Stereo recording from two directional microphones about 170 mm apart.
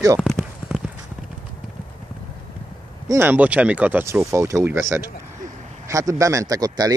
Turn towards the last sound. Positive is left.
turn(degrees=-20)  # may be behind; listen again after turning